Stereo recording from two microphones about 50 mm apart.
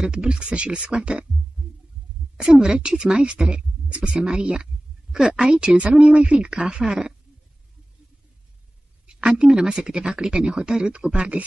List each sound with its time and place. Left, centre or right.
0.1 s speech: right
2.3 s speech: centre
9.0 s speech: centre